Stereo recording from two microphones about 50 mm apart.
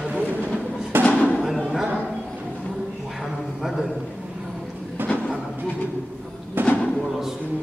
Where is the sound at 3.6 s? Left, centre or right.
Centre.